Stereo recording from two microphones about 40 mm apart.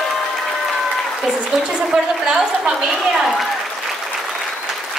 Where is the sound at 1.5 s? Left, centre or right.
Centre.